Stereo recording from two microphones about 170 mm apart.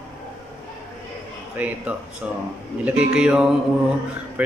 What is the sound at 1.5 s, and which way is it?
Speech, 10° right (ahead or behind).